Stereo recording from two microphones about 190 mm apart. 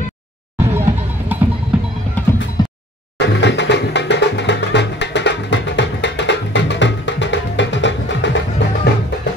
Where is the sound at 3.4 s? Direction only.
65° left (ahead or behind).